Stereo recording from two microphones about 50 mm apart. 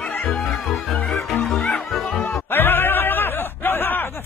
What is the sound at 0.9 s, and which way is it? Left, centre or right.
Music, left.